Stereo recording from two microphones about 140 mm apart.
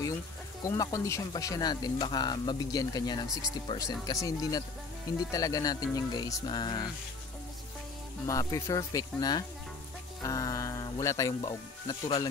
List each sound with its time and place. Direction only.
0.7 s speech: 20° left (ahead or behind)
8.3 s speech: 25° left (ahead or behind)